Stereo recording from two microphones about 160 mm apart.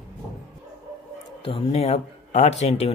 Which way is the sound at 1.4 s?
35° left (ahead or behind).